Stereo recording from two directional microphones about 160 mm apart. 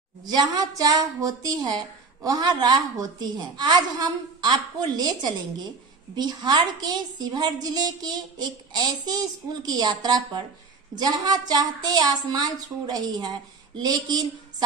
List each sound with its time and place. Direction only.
0.2 s a woman's voice: 25° right (ahead or behind)